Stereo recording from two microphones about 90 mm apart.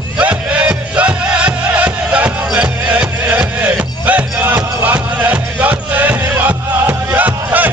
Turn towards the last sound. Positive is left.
turn(degrees=-20)  # may be behind; listen again after turning